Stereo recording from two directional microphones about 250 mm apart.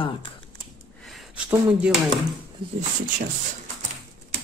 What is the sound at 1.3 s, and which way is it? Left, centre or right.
Speech, centre.